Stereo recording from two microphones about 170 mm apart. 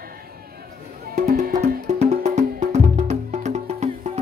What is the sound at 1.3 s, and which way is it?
Music, 50° right (ahead or behind).